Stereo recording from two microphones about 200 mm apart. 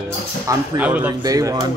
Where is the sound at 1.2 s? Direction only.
20° right (ahead or behind).